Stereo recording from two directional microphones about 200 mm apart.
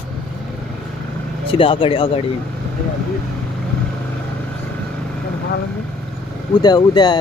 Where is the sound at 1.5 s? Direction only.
25° left (ahead or behind).